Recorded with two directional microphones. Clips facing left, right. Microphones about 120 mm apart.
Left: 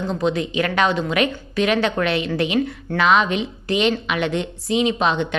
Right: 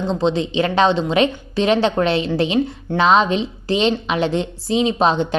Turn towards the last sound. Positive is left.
turn(degrees=-35)  # may be behind; listen again after turning